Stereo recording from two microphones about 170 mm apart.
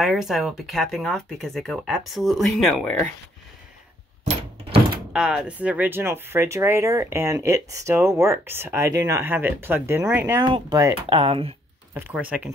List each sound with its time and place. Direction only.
0.0 s speech: centre (ahead or behind)
4.2 s a sound: 35° right (ahead or behind)
5.1 s speech: 5° right (ahead or behind)
10.4 s speech: 25° right (ahead or behind)
11.1 s speech: 30° right (ahead or behind)
11.9 s speech: 10° right (ahead or behind)